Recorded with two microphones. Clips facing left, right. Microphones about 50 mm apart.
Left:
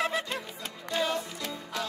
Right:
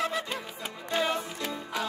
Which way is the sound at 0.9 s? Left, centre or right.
Right.